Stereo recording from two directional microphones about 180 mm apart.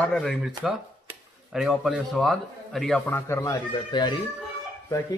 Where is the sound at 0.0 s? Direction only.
5° left (ahead or behind).